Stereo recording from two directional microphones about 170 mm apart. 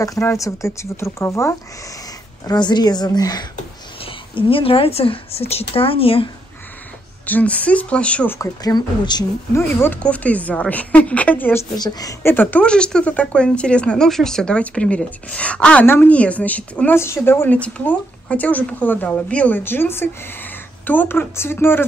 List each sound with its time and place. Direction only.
0.0 s a woman's voice: 20° left (ahead or behind); by 6.3 s 35° left (ahead or behind)
7.2 s a woman's voice: 10° left (ahead or behind)
8.4 s a woman's voice: 20° left (ahead or behind)
9.6 s a woman's voice: 10° left (ahead or behind)
11.7 s a woman's voice: 25° left (ahead or behind)